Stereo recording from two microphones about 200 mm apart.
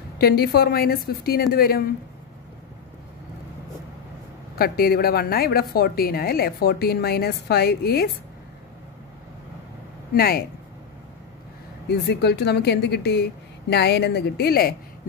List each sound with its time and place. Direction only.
0.2 s a woman's voice: 50° left (ahead or behind)
4.6 s a woman's voice: 50° left (ahead or behind)
10.1 s a woman's voice: 50° left (ahead or behind)
11.9 s speech: 55° left (ahead or behind)